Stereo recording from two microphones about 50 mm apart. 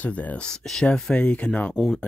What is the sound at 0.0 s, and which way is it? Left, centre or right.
Speech, left.